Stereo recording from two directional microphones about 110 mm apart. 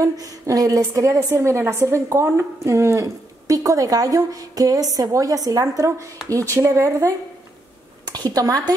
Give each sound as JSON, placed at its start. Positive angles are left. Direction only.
{"t": 0.0, "sound": "a woman's voice", "side_deg": -30}